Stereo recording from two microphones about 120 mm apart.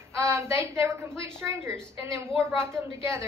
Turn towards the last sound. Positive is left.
turn(degrees=-20)  # may be behind; listen again after turning